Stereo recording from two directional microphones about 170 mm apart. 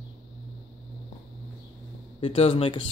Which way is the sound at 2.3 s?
40° left (ahead or behind).